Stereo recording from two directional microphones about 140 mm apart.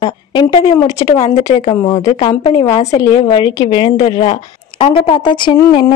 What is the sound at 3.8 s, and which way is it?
Speech, 45° left (ahead or behind).